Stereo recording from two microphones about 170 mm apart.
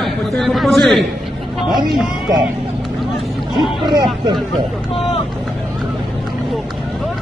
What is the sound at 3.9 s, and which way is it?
Speech, 25° right (ahead or behind).